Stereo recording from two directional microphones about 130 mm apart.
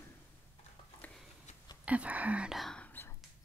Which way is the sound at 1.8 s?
10° right (ahead or behind).